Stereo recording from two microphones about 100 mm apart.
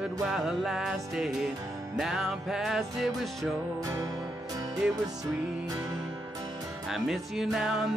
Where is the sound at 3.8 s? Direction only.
40° right (ahead or behind).